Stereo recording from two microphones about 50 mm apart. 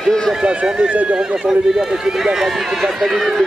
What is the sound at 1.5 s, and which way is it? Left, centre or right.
Speech, centre.